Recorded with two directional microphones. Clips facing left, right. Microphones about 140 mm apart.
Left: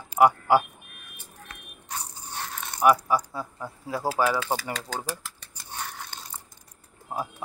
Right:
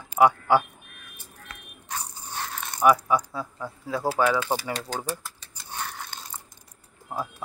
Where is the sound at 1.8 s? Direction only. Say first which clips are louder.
Right 2 dB; 90° right.